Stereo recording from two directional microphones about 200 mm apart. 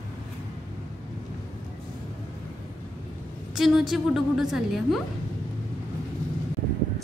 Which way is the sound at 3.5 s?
Centre (ahead or behind).